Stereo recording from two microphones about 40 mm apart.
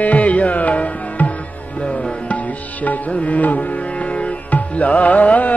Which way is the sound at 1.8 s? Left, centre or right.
Left.